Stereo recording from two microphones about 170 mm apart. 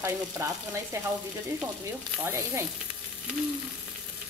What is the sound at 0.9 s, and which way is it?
Speech, 15° right (ahead or behind).